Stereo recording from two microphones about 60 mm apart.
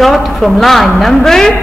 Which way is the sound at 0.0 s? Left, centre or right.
Centre.